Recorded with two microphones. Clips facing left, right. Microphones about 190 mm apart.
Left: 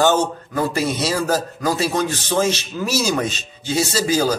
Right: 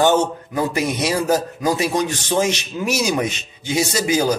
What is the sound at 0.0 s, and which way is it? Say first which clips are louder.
A man's voice: right 1 dB; 15° right (ahead or behind).